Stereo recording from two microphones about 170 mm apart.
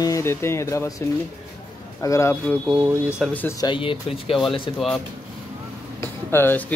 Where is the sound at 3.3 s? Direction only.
15° left (ahead or behind).